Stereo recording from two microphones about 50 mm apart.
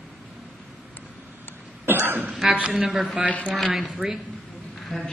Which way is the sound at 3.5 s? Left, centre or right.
Centre.